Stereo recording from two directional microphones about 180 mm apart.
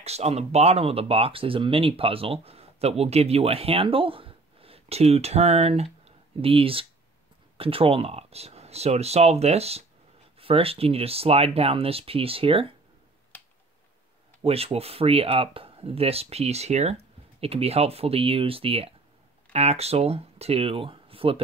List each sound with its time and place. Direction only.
0.0 s speech: 35° right (ahead or behind)
14.4 s speech: 35° right (ahead or behind)